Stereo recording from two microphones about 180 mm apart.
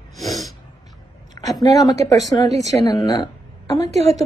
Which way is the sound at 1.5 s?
20° left (ahead or behind).